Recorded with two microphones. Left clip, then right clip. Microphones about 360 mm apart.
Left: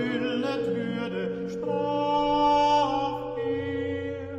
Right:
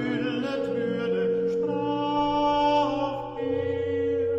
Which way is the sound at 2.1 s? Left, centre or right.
Left.